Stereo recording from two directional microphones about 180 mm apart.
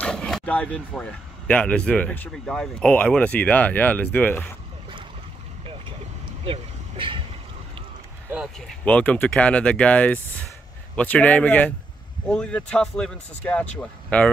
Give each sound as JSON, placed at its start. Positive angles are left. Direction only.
{"t": 0.0, "sound": "speech", "side_deg": 5}
{"t": 6.4, "sound": "vehicle", "side_deg": -30}
{"t": 8.5, "sound": "speech", "side_deg": 5}